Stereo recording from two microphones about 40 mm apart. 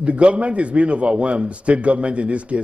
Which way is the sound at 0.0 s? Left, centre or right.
Right.